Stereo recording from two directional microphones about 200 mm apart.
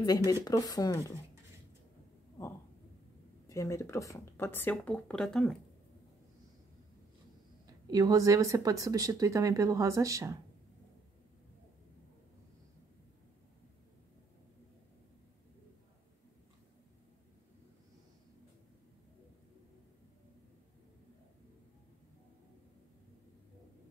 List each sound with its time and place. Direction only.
0.0 s speech: 20° left (ahead or behind)
3.4 s speech: 15° left (ahead or behind)
7.9 s speech: 15° right (ahead or behind)